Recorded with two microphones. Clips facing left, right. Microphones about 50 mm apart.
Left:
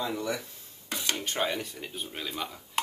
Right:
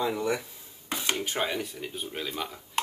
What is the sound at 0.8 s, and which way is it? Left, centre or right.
Dishes, right.